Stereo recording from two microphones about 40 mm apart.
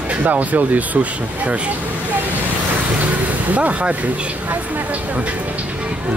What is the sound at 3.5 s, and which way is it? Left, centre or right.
Speech, right.